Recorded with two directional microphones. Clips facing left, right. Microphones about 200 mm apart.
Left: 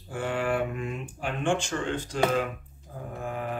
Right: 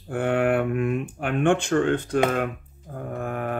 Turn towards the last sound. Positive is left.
turn(degrees=-60)  # may be behind; listen again after turning